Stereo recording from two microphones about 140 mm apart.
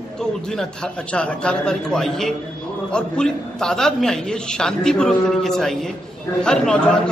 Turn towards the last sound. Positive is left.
turn(degrees=5)  # may be behind; listen again after turning